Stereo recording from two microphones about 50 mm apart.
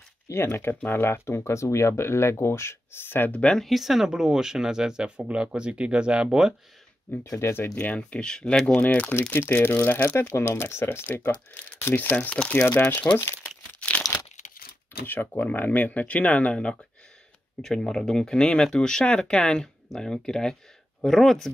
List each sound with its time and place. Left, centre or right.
0.3 s speech: left
3.3 s speech: left
3.5 s speech: centre
7.2 s speech: left
7.7 s speech: left
8.1 s speech: centre
8.7 s speech: left
9.5 s speech: left
9.8 s speech: left
10.1 s speech: left
10.6 s speech: left
13.7 s crumpling: left
15.0 s speech: left
17.6 s speech: centre